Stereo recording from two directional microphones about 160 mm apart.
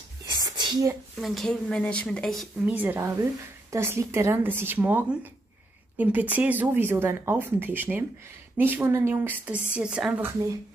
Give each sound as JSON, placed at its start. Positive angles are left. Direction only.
{"t": 0.4, "sound": "a sound", "side_deg": -25}
{"t": 1.1, "sound": "a woman's voice", "side_deg": 0}
{"t": 2.6, "sound": "speech", "side_deg": -10}